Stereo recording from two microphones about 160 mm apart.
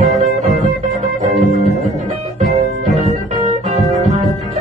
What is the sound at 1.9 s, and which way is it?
Music, 50° right (ahead or behind).